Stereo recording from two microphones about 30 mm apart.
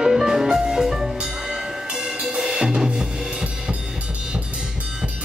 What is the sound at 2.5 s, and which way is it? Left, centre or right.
Drum kit, right.